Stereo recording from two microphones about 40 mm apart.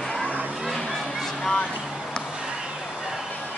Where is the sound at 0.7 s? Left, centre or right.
Centre.